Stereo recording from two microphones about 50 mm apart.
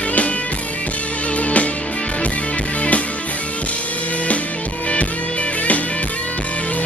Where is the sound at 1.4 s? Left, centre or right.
Left.